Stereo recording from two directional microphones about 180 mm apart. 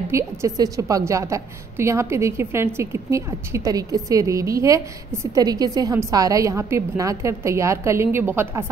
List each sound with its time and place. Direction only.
0.1 s a woman's voice: 15° right (ahead or behind)